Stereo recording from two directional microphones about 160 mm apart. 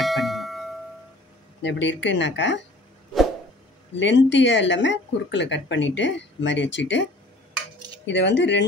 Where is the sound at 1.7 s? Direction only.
90° left.